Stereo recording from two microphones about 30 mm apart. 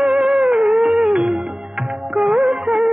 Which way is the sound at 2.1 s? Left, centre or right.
Right.